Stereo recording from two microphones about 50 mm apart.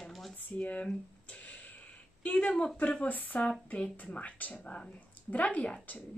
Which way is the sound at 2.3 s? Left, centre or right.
Left.